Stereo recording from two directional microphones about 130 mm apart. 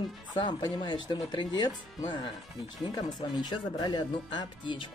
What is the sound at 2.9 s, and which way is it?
Speech, 30° left (ahead or behind).